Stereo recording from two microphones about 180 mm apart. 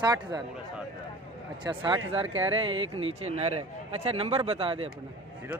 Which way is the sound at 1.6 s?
25° right (ahead or behind).